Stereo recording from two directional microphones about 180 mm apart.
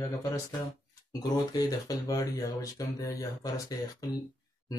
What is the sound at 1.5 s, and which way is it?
Speech, 20° left (ahead or behind).